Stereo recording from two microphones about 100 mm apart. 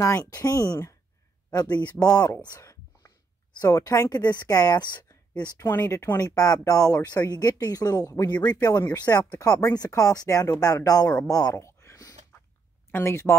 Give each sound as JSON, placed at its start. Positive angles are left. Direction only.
{"t": 0.0, "sound": "speech", "side_deg": 30}
{"t": 1.5, "sound": "speech", "side_deg": 40}
{"t": 2.6, "sound": "whispering", "side_deg": 35}
{"t": 3.5, "sound": "speech", "side_deg": 40}
{"t": 5.7, "sound": "speech", "side_deg": 25}
{"t": 6.2, "sound": "speech", "side_deg": 35}
{"t": 11.5, "sound": "a sound", "side_deg": 30}
{"t": 12.9, "sound": "speech", "side_deg": 25}